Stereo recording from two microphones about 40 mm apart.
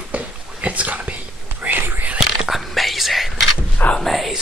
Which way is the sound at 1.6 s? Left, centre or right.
Right.